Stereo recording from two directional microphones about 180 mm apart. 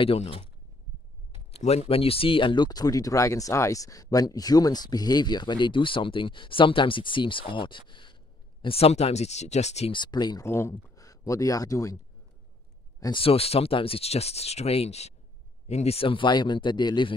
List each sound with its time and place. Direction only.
0.0 s speech: 30° left (ahead or behind)
1.5 s speech: 35° left (ahead or behind)
7.9 s a sound: 25° left (ahead or behind)
8.6 s speech: 35° left (ahead or behind)
9.9 s speech: 25° left (ahead or behind)
13.0 s speech: 30° left (ahead or behind)